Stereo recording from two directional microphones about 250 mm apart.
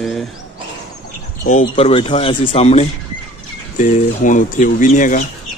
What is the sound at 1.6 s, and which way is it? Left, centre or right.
Speech, left.